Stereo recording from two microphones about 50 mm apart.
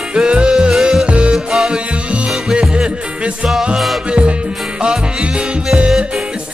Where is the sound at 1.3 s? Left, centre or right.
Centre.